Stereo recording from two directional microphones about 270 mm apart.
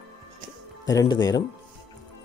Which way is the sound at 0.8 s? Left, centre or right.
Centre.